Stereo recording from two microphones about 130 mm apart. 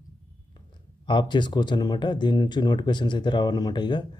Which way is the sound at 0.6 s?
35° left (ahead or behind).